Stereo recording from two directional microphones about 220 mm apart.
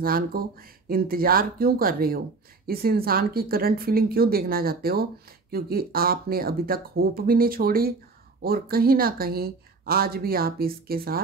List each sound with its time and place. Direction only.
0.0 s speech: 40° right (ahead or behind)